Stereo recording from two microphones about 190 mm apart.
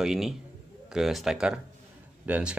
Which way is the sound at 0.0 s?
Centre (ahead or behind).